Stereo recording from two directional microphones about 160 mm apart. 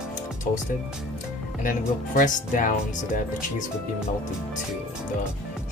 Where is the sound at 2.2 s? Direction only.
55° left (ahead or behind).